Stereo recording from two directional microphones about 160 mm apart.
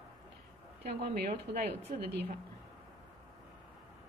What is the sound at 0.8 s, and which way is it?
Speech, 90° right.